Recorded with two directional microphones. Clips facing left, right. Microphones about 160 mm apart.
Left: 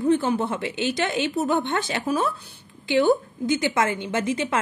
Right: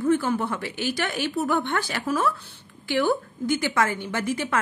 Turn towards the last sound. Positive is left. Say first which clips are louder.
# left 2 dB
turn(degrees=20)  # may be behind; listen again after turning